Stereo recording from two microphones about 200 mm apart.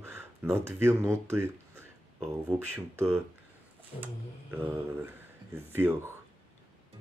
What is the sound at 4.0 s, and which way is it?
Speech, 10° right (ahead or behind).